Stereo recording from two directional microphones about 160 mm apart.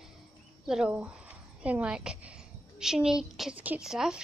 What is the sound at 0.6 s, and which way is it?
A woman's voice, 5° right (ahead or behind).